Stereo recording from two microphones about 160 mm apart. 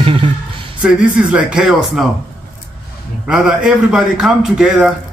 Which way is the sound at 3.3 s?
5° right (ahead or behind).